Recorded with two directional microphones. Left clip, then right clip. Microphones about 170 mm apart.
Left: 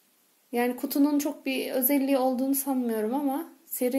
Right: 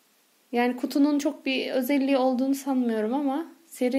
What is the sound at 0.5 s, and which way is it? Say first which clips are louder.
A woman's voice: right 2 dB; 10° right (ahead or behind).